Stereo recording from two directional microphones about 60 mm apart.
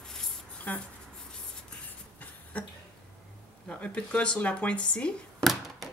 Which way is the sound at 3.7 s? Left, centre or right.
Left.